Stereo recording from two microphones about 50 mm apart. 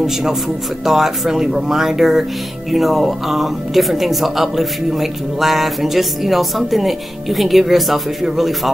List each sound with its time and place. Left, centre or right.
0.0 s a man's voice: centre